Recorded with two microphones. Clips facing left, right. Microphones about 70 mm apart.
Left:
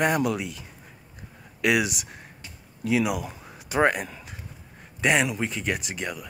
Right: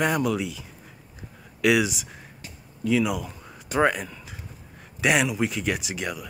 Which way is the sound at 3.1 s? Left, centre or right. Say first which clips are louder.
Even; left.